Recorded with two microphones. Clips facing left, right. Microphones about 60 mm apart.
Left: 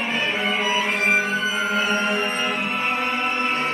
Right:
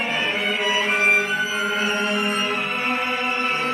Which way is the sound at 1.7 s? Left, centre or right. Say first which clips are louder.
Left 2 dB; centre.